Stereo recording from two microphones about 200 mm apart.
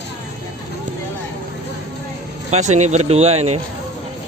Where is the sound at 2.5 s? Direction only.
35° right (ahead or behind).